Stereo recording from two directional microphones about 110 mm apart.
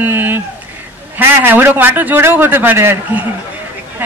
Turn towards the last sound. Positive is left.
turn(degrees=-20)  # may be behind; listen again after turning